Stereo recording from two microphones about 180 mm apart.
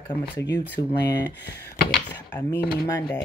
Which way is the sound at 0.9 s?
65° left (ahead or behind).